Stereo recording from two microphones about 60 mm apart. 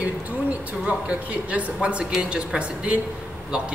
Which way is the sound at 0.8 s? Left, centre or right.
Right.